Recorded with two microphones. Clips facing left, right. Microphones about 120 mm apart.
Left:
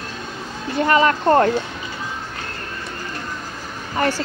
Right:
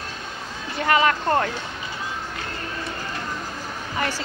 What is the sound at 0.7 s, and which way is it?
Speech, 35° left (ahead or behind).